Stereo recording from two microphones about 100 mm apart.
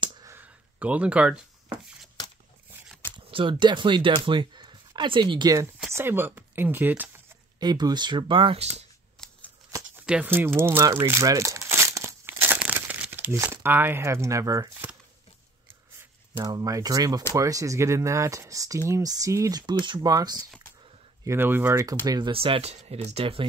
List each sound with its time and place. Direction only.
0.4 s a sound: 15° right (ahead or behind)
3.3 s speech: 60° right (ahead or behind); by 5.7 s 40° right (ahead or behind)
5.9 s speech: 20° right (ahead or behind)
7.6 s speech: 45° right (ahead or behind); by 8.8 s 75° right (ahead or behind)
10.0 s speech: 10° right (ahead or behind)
10.3 s speech: 20° right (ahead or behind)
11.1 s crumpling: 30° right (ahead or behind)
16.5 s speech: 35° right (ahead or behind)
19.6 s speech: 50° right (ahead or behind)
21.2 s speech: 25° right (ahead or behind)
22.0 s speech: 40° right (ahead or behind)
22.3 s speech: 70° right (ahead or behind)